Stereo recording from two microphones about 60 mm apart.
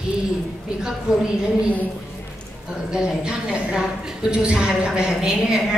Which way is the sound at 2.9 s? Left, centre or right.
Centre.